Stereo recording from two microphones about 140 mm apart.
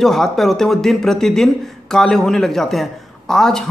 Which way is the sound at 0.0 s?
Centre (ahead or behind).